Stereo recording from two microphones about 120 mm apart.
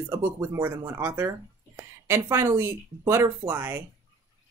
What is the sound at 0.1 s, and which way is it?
A woman's voice, 20° right (ahead or behind).